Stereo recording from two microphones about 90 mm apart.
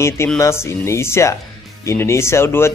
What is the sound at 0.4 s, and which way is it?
Speech, 30° left (ahead or behind).